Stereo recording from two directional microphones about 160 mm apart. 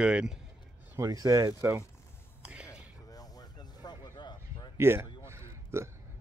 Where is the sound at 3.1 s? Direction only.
25° left (ahead or behind).